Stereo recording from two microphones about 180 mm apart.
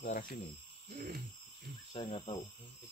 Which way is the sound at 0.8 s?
50° right (ahead or behind).